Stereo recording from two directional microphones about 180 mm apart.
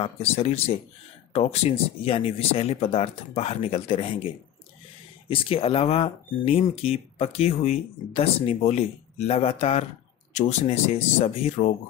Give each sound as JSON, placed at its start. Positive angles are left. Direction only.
{"t": 0.0, "sound": "speech", "side_deg": 35}
{"t": 5.3, "sound": "speech", "side_deg": 30}